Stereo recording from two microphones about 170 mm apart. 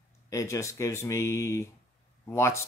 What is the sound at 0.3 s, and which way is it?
Speech, 20° left (ahead or behind).